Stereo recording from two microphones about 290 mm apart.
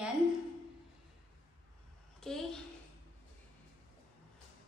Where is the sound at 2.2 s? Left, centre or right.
Centre.